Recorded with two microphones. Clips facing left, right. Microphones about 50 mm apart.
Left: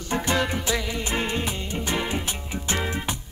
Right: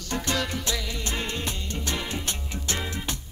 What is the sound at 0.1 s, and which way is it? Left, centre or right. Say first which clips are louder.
Music: left 4 dB; left.